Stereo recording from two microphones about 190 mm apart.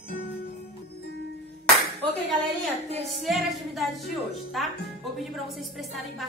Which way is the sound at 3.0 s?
Centre (ahead or behind).